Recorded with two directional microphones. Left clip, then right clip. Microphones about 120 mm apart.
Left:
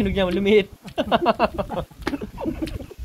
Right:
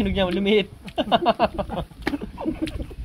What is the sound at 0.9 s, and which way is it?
Bird, 40° left (ahead or behind).